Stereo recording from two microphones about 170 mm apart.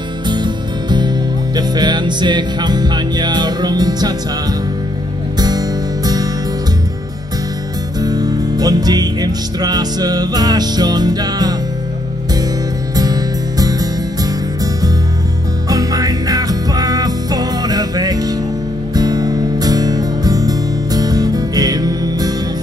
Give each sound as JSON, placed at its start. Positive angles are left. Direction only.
{"t": 0.3, "sound": "music", "side_deg": -25}
{"t": 5.4, "sound": "music", "side_deg": -25}
{"t": 8.0, "sound": "music", "side_deg": -25}
{"t": 12.9, "sound": "music", "side_deg": -20}